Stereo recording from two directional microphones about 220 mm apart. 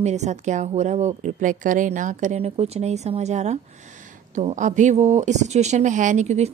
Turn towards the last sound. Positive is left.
turn(degrees=-30)  # may be behind; listen again after turning